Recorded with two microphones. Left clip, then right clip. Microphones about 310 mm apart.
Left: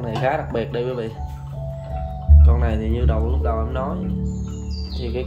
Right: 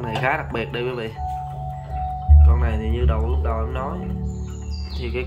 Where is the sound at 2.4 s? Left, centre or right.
Centre.